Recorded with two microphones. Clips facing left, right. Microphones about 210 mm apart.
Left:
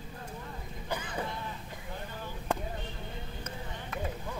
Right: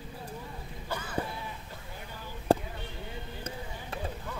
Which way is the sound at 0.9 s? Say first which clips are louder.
Left 1 dB; 15° left (ahead or behind).